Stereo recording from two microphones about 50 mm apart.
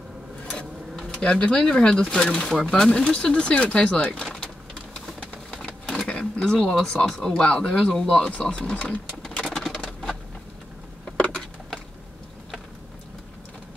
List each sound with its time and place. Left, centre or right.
0.9 s speech: centre
4.2 s sewing machine: centre
6.0 s speech: centre
9.4 s patter: centre
11.1 s a sound: left